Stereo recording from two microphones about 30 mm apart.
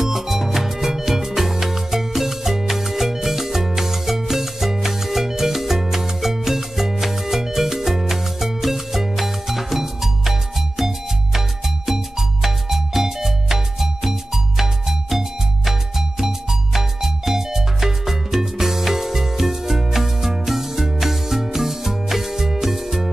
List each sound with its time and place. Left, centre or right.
0.0 s music: centre
11.3 s music: centre